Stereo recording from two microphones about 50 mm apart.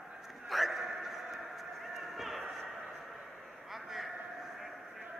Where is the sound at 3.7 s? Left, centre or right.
Centre.